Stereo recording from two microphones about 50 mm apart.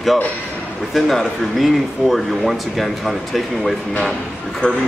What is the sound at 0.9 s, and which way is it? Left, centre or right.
Speech, centre.